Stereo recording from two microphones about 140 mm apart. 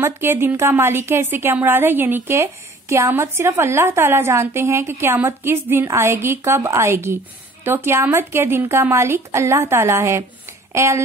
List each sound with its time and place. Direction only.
0.0 s a woman's voice: 15° right (ahead or behind)